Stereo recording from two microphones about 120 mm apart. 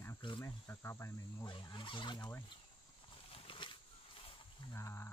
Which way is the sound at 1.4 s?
45° left (ahead or behind).